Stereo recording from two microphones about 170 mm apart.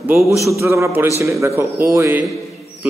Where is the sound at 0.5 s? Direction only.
15° right (ahead or behind).